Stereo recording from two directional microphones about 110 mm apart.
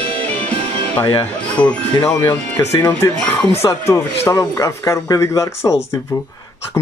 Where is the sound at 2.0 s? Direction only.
25° left (ahead or behind).